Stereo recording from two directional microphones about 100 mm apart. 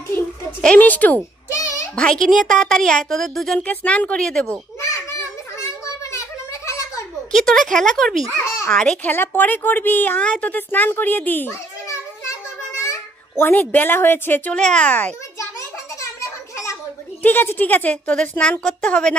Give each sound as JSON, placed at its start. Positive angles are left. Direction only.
{"t": 0.6, "sound": "a woman's voice", "side_deg": 15}
{"t": 2.0, "sound": "a woman's voice", "side_deg": 5}
{"t": 3.6, "sound": "a woman's voice", "side_deg": 15}
{"t": 5.6, "sound": "a sound", "side_deg": 30}
{"t": 7.3, "sound": "a woman's voice", "side_deg": 5}
{"t": 8.5, "sound": "a sound", "side_deg": 30}
{"t": 8.7, "sound": "a woman's voice", "side_deg": 10}
{"t": 9.1, "sound": "a woman's voice", "side_deg": 20}
{"t": 12.8, "sound": "a child's voice", "side_deg": 25}
{"t": 16.0, "sound": "a sound", "side_deg": 30}
{"t": 17.2, "sound": "a woman's voice", "side_deg": 20}